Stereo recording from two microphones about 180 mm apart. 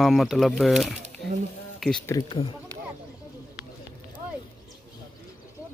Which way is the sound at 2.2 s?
35° left (ahead or behind).